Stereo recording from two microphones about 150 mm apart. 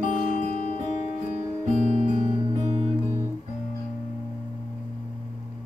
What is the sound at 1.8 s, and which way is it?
Guitar, 45° right (ahead or behind).